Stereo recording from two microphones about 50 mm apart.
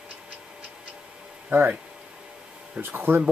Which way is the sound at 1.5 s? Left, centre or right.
Right.